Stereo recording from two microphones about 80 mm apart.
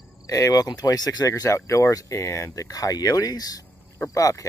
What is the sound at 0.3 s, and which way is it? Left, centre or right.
Speech, left.